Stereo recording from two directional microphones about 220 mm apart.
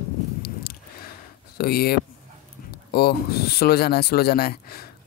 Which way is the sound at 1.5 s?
45° left (ahead or behind).